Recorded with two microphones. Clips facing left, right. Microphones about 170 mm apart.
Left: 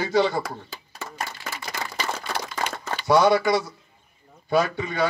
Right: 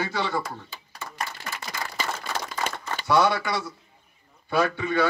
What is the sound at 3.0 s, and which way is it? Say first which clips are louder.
Speech: left 4 dB; 40° left (ahead or behind).